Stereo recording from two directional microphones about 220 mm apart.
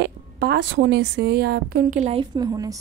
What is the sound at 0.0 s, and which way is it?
A woman's voice, 50° right (ahead or behind).